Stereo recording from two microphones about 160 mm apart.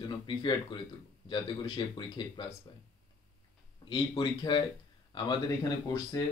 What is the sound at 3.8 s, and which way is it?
Speech, 30° left (ahead or behind).